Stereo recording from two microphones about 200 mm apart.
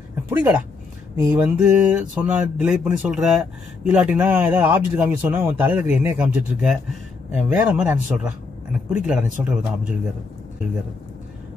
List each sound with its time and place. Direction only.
0.3 s speech: 10° right (ahead or behind)